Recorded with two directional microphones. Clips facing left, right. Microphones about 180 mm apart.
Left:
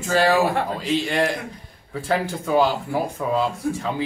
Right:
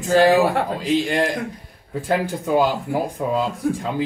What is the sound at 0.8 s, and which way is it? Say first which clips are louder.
Speech: right 2 dB; 15° right (ahead or behind).